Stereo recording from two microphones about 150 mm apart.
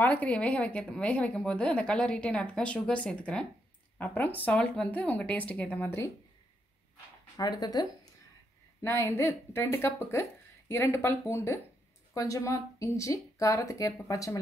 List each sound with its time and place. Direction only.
0.0 s a woman's voice: 10° left (ahead or behind)
7.3 s speech: 30° left (ahead or behind)
8.8 s a woman's voice: 15° left (ahead or behind)